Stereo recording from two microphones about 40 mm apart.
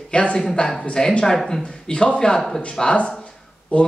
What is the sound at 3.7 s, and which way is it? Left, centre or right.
Speech, left.